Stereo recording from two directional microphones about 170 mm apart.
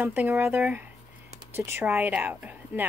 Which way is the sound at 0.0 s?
10° right (ahead or behind).